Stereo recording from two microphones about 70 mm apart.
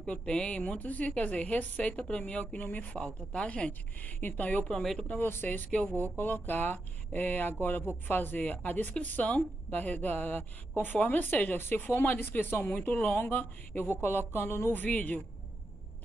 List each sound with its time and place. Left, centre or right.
0.0 s speech: centre
4.6 s speech: centre
5.0 s speech: left